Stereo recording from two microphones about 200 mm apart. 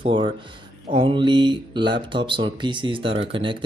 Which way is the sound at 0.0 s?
25° right (ahead or behind).